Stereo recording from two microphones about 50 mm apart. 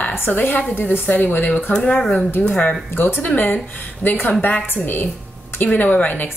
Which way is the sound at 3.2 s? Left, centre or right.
Left.